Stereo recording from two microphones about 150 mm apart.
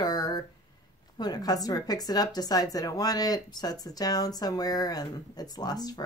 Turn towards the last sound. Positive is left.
turn(degrees=25)  # may be behind; listen again after turning